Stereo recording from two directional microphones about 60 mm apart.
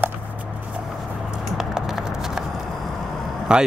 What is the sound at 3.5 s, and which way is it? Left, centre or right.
Speech, centre.